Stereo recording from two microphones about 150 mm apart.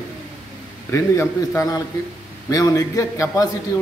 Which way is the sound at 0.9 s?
20° left (ahead or behind).